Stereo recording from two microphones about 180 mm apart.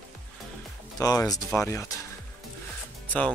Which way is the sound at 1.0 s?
20° left (ahead or behind).